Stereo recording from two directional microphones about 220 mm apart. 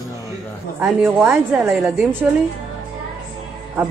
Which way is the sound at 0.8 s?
5° right (ahead or behind).